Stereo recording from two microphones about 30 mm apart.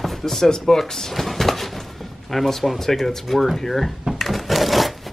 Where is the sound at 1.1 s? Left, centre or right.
Centre.